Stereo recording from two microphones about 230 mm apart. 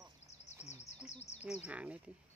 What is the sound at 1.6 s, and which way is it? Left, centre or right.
Speech, centre.